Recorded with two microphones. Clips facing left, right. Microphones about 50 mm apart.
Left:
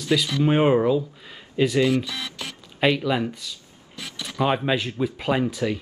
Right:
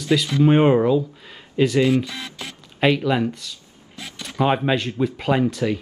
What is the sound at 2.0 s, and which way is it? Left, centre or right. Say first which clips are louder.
Speech: left 1 dB; right.